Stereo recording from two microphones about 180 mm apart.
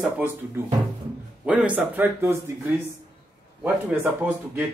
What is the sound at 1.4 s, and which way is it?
A man's voice, 10° right (ahead or behind).